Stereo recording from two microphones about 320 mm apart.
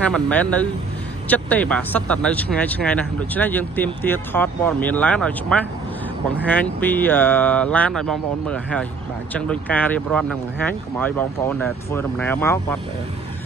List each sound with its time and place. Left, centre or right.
0.0 s speech: centre